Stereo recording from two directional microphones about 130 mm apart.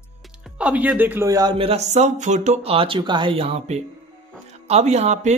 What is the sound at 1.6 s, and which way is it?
Speech, 55° right (ahead or behind).